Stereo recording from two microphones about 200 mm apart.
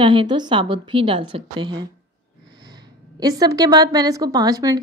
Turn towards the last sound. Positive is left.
turn(degrees=-20)  # may be behind; listen again after turning